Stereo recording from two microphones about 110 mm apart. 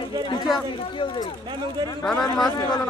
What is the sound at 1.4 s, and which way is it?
Speech, 45° right (ahead or behind).